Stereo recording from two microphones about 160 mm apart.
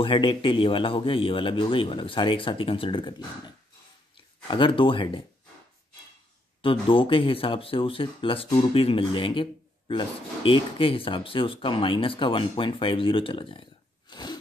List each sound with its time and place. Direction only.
0.0 s speech: 30° left (ahead or behind)
6.6 s speech: 35° left (ahead or behind)
14.1 s a sound: 25° left (ahead or behind)